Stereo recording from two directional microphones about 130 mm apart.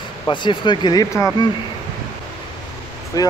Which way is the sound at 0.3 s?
35° left (ahead or behind).